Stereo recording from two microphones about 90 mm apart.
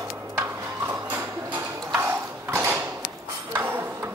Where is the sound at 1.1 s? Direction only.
25° right (ahead or behind).